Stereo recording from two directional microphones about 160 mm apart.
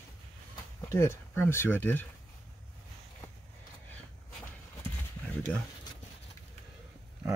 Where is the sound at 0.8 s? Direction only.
15° left (ahead or behind).